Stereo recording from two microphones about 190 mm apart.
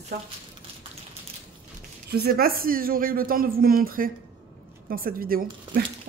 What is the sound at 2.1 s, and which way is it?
Speech, 55° right (ahead or behind).